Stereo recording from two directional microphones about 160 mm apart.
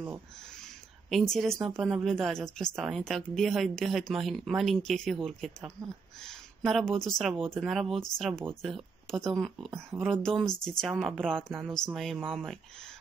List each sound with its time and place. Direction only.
1.1 s a woman's voice: centre (ahead or behind)